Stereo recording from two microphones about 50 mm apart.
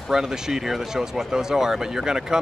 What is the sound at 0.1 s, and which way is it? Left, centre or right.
Speech, centre.